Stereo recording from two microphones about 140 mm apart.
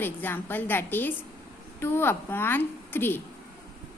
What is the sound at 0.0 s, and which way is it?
A woman's voice, 15° left (ahead or behind).